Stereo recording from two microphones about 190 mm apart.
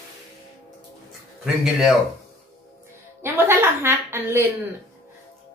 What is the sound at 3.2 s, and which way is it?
A woman's voice, 15° right (ahead or behind).